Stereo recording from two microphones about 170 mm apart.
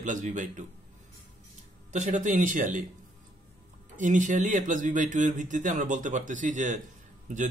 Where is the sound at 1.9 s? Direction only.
45° right (ahead or behind).